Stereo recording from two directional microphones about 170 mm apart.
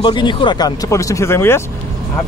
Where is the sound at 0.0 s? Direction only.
25° left (ahead or behind).